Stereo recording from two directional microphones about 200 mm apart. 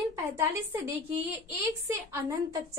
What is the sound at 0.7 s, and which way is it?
Speech, 10° right (ahead or behind).